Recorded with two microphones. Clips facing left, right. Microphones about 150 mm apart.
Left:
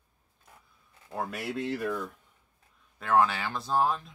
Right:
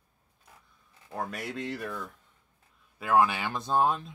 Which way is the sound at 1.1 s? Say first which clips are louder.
Left 1 dB; 5° left (ahead or behind).